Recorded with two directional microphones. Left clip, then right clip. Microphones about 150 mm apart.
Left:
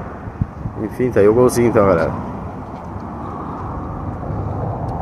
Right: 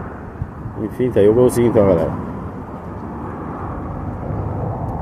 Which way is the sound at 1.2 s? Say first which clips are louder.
Even; 5° right (ahead or behind).